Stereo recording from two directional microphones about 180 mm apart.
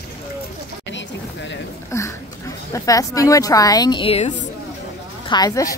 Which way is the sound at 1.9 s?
15° left (ahead or behind).